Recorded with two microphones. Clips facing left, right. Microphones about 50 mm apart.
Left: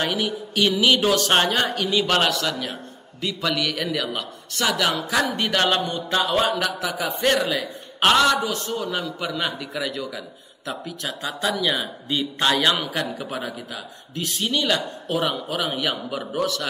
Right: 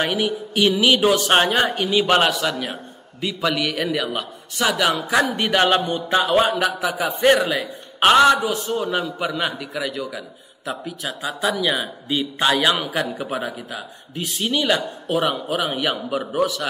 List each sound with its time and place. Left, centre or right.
0.0 s a woman's voice: centre
4.9 s a woman's voice: right
8.8 s speech: right
9.2 s a woman's voice: centre